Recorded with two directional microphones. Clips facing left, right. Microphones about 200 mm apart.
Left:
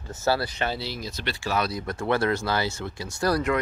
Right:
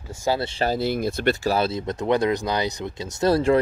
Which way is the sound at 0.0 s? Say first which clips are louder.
Right 1 dB; 10° right (ahead or behind).